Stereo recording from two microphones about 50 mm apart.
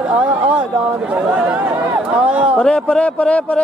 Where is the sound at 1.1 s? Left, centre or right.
Right.